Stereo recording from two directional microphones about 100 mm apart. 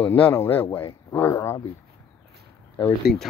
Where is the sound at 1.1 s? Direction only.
30° left (ahead or behind).